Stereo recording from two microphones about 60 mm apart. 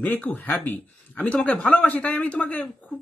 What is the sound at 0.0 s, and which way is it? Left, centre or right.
Speech, left.